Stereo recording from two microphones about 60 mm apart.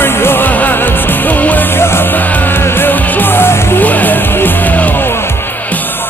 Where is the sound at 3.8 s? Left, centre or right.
Left.